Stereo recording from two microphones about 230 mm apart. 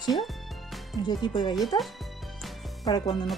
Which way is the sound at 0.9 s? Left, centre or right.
Centre.